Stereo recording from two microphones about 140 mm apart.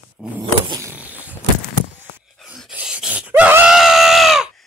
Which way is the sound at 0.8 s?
10° right (ahead or behind).